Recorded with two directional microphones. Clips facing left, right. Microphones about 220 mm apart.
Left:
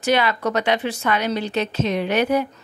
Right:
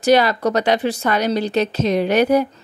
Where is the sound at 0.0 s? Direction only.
40° right (ahead or behind).